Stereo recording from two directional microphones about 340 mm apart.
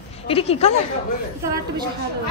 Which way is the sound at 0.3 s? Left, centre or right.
Centre.